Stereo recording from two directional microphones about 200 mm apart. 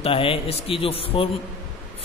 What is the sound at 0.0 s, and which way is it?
A man's voice, 25° left (ahead or behind).